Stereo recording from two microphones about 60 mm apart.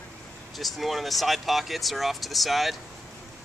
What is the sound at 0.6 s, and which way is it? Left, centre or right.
Speech, centre.